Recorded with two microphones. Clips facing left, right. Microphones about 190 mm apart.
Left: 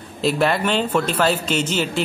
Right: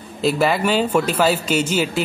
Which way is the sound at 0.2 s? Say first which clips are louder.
Right 1 dB; 5° right (ahead or behind).